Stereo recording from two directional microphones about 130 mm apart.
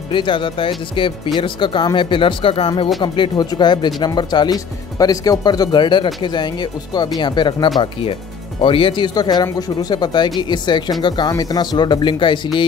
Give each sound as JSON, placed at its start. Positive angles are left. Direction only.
{"t": 0.1, "sound": "speech", "side_deg": 40}